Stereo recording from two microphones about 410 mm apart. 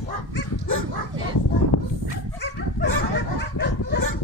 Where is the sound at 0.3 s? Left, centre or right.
Left.